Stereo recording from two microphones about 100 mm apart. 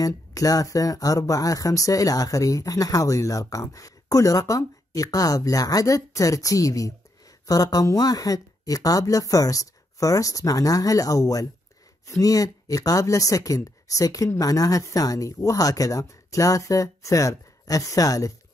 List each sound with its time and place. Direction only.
0.0 s speech: 35° left (ahead or behind)